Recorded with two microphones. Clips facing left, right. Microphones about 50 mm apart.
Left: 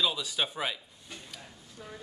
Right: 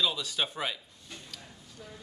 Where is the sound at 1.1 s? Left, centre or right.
Centre.